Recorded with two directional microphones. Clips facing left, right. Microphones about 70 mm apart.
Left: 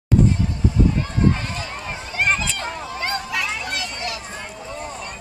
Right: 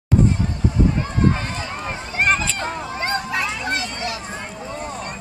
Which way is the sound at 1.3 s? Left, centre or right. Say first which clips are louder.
Right 2 dB; right.